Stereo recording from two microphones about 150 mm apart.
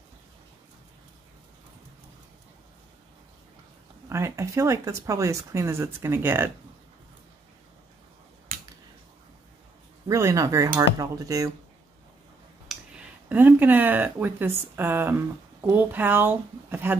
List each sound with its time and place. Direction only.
4.1 s speech: 20° right (ahead or behind)
10.0 s speech: 20° right (ahead or behind)
12.6 s speech: 10° right (ahead or behind)